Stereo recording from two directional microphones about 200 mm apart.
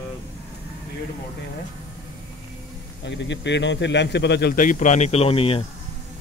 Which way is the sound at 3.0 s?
60° left (ahead or behind).